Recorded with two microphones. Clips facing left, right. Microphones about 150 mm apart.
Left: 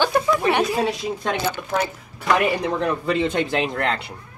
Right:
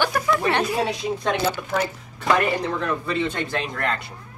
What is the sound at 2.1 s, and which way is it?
Speech, 15° left (ahead or behind).